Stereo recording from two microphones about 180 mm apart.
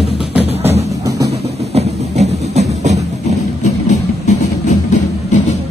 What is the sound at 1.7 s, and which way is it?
Music, 40° right (ahead or behind).